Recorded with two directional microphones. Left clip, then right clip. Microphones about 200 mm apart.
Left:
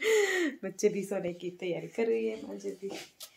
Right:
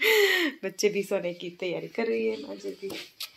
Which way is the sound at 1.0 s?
30° right (ahead or behind).